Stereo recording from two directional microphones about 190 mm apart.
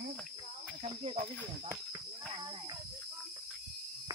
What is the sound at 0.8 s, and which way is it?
Speech, 35° right (ahead or behind).